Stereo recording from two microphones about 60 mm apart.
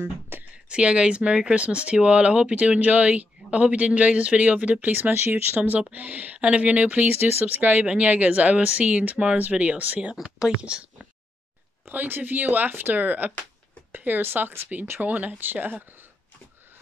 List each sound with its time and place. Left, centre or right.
0.0 s a sound: right
0.7 s speech: centre
5.1 s speech: right
7.2 s speech: right
7.8 s speech: right
10.1 s speech: centre
11.9 s speech: right